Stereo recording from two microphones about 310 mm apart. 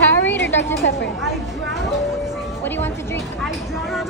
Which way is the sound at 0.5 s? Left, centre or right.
Left.